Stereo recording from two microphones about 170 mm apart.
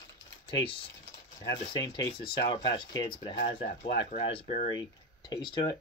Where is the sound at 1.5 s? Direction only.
25° left (ahead or behind).